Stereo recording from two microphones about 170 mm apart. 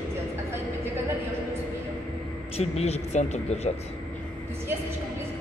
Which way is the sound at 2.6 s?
40° left (ahead or behind).